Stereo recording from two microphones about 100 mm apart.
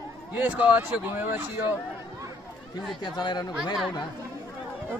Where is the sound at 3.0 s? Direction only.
45° left (ahead or behind).